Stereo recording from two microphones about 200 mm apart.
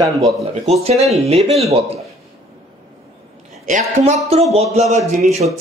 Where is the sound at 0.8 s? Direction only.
30° right (ahead or behind).